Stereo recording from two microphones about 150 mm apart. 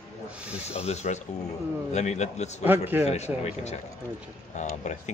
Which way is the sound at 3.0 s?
45° left (ahead or behind).